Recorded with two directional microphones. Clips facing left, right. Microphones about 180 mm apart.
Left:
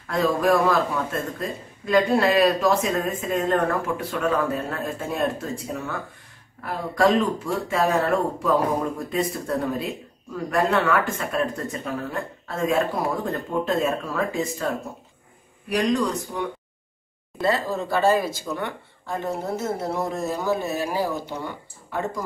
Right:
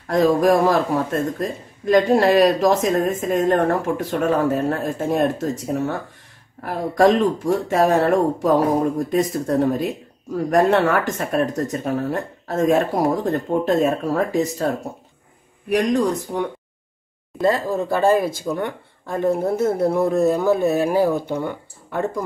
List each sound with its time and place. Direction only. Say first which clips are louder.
0.0 s a man's voice: right 6 dB; 40° right (ahead or behind)
15.7 s speech: right 4 dB; 60° right (ahead or behind)
17.9 s speech: right 3 dB; 50° right (ahead or behind)